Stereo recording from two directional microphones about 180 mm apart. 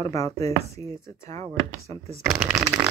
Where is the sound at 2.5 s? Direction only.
20° right (ahead or behind).